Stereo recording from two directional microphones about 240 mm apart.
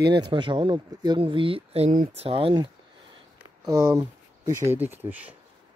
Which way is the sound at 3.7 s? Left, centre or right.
Centre.